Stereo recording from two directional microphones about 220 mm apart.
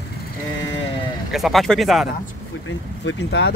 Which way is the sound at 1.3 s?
Centre (ahead or behind).